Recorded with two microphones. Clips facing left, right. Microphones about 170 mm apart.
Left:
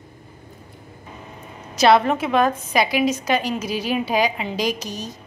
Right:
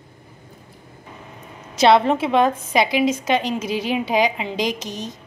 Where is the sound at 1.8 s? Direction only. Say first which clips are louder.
Right 1 dB; 25° right (ahead or behind).